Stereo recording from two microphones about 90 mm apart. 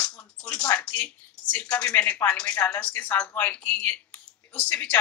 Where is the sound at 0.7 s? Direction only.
15° left (ahead or behind).